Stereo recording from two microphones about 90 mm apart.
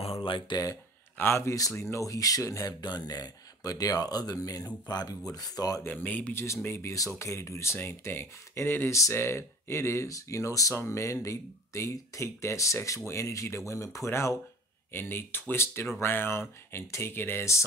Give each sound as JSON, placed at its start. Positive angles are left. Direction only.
{"t": 0.0, "sound": "a sound", "side_deg": 85}
{"t": 1.1, "sound": "speech", "side_deg": 25}
{"t": 5.9, "sound": "speech", "side_deg": 20}
{"t": 6.3, "sound": "speech", "side_deg": 30}